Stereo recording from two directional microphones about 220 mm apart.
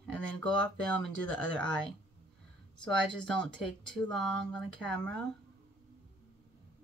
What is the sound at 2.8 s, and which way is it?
Speech, 5° left (ahead or behind).